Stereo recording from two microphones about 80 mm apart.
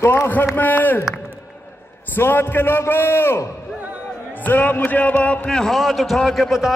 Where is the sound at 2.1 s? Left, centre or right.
Left.